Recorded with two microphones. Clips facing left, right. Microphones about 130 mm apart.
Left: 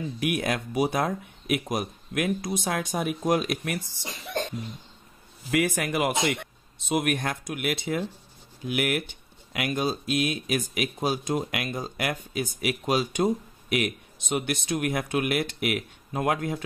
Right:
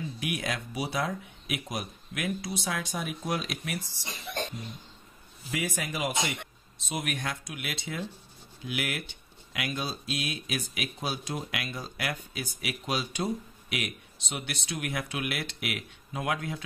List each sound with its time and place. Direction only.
0.2 s speech: 50° left (ahead or behind)
5.5 s speech: 60° left (ahead or behind)